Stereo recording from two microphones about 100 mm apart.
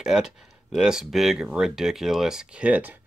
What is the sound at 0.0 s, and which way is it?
Speech, 5° right (ahead or behind).